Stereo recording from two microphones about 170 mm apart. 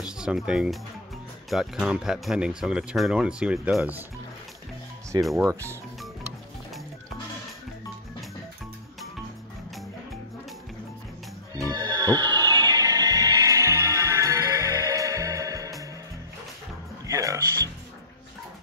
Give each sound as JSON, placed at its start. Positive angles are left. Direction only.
{"t": 0.0, "sound": "speech", "side_deg": -5}
{"t": 5.4, "sound": "speech", "side_deg": -15}
{"t": 11.5, "sound": "music", "side_deg": -20}
{"t": 17.1, "sound": "music", "side_deg": -20}